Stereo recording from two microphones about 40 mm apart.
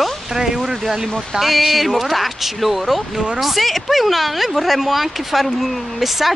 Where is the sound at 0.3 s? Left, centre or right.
Centre.